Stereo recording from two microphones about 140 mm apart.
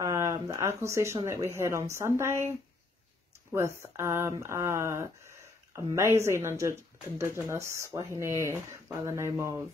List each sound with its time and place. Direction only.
0.0 s a sound: 25° right (ahead or behind)
1.2 s speech: 20° right (ahead or behind)
3.5 s speech: 20° right (ahead or behind)